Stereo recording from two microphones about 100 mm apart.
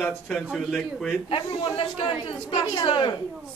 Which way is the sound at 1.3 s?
65° left (ahead or behind).